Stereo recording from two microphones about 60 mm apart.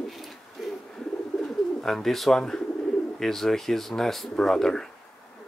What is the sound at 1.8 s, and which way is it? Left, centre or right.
Speech, centre.